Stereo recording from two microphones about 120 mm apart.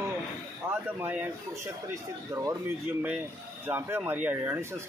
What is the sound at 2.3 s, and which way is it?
Speech, 25° right (ahead or behind).